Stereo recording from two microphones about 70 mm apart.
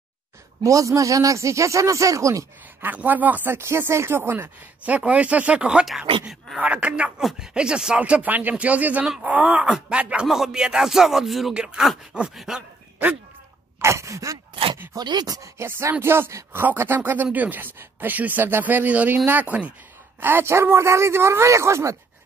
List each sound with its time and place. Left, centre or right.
0.7 s speech: right
2.8 s a man's voice: right
4.8 s speech: right
6.6 s speech: centre
13.7 s speech: right
15.0 s speech: right
15.5 s a man's voice: right
20.2 s a man's voice: right